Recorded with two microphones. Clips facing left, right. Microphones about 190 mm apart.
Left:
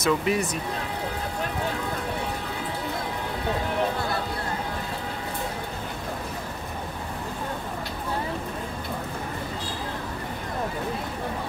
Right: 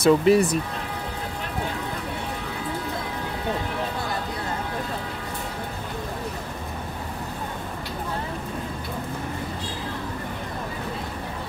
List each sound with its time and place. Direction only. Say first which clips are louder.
0.0 s speech: right 7 dB; 35° right (ahead or behind)